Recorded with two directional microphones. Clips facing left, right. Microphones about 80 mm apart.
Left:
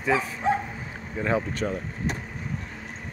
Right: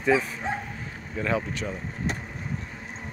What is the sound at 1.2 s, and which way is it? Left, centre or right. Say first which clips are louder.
Speech: left 1 dB; left.